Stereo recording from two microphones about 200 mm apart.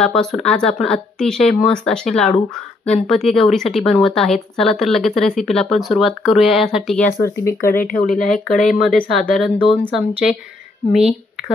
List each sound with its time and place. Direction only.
0.0 s speech: 5° left (ahead or behind)
7.1 s speech: 15° left (ahead or behind)
7.6 s speech: 45° left (ahead or behind)
8.2 s speech: centre (ahead or behind)
9.6 s speech: 25° left (ahead or behind)
10.9 s speech: 5° right (ahead or behind)